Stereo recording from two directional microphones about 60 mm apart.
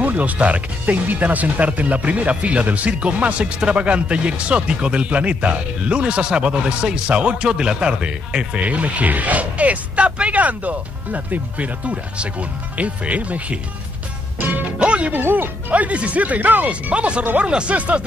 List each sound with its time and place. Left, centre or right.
0.0 s speech: right
14.4 s music: right
15.1 s speech: right
15.7 s speech: right